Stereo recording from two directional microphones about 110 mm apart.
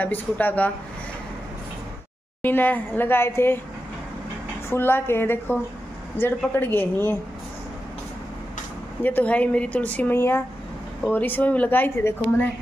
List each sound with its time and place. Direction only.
0.0 s a woman's voice: 15° left (ahead or behind)
2.4 s a woman's voice: 20° left (ahead or behind)
4.6 s a woman's voice: 20° left (ahead or behind)
9.0 s a woman's voice: 15° left (ahead or behind)